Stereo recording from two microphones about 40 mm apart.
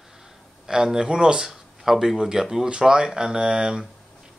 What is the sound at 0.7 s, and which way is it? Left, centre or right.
Speech, centre.